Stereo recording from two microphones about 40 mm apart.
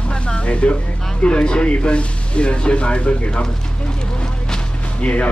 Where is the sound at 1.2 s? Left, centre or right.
Left.